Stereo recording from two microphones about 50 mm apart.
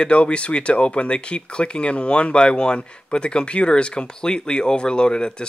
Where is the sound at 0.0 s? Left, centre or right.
Left.